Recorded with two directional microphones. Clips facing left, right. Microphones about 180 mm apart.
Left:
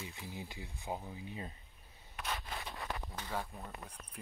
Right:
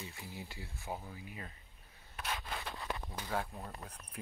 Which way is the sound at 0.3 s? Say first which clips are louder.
Left 1 dB; 15° left (ahead or behind).